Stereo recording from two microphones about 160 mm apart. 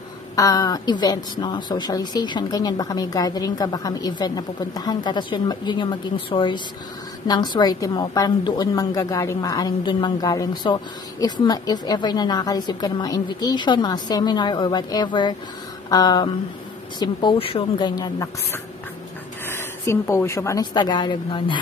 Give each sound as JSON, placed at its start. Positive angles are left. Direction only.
{"t": 0.4, "sound": "a woman's voice", "side_deg": 20}